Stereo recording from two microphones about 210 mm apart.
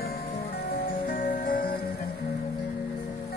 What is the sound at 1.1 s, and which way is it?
Music, 45° left (ahead or behind).